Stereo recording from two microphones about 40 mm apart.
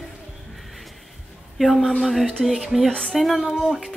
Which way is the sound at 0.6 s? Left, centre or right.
Centre.